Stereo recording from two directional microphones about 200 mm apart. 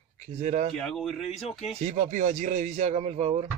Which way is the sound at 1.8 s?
35° right (ahead or behind).